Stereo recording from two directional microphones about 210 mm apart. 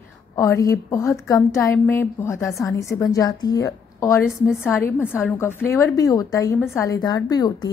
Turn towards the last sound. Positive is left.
turn(degrees=20)  # may be behind; listen again after turning